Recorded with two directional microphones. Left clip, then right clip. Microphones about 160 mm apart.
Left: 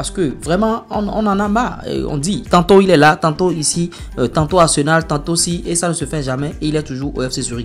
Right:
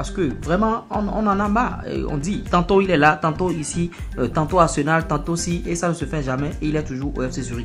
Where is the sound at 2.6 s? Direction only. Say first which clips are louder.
Left 6 dB; 75° left (ahead or behind).